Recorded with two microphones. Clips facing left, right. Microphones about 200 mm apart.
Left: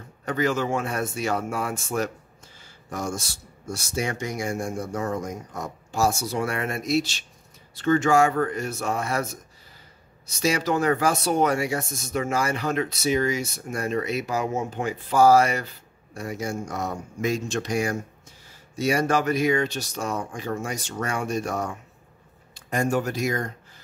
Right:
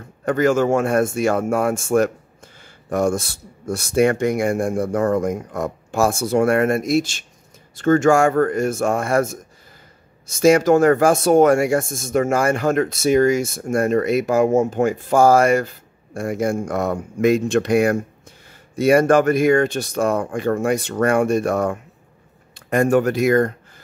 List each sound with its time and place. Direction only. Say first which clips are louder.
0.2 s speech: right 8 dB; 50° right (ahead or behind)